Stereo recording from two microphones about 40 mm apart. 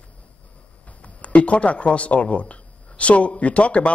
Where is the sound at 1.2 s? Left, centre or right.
Left.